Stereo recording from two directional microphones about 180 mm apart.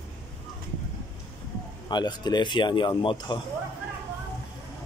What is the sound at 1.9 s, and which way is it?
A man's voice, 25° left (ahead or behind).